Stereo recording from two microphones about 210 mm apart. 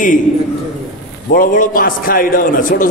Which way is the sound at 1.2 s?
40° left (ahead or behind).